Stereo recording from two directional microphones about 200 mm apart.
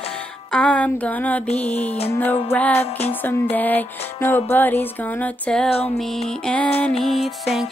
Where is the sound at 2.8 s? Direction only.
30° left (ahead or behind).